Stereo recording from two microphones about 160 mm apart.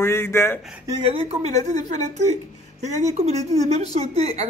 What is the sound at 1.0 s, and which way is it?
A woman's voice, 40° right (ahead or behind).